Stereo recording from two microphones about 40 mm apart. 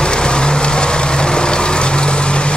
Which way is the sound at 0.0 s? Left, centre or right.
Left.